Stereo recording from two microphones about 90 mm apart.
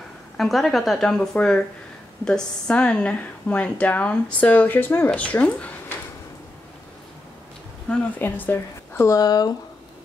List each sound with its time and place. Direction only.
0.4 s speech: centre (ahead or behind)
8.2 s a woman's voice: 20° left (ahead or behind)
9.0 s speech: 40° left (ahead or behind)